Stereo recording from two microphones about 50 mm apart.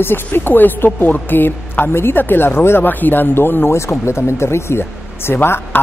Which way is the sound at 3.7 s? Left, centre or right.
Left.